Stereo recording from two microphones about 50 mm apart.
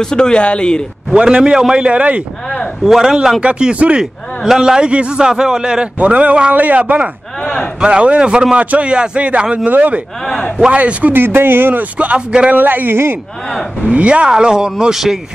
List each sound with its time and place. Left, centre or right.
0.0 s speech: centre
1.1 s speech: centre
2.8 s a man's voice: centre
3.3 s speech: centre
4.0 s a man's voice: centre
5.9 s speech: right
10.2 s speech: centre
10.7 s speech: right
11.1 s speech: right
13.8 s speech: right; by 15.1 s centre